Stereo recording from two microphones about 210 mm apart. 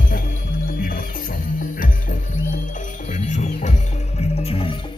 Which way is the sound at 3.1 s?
35° left (ahead or behind).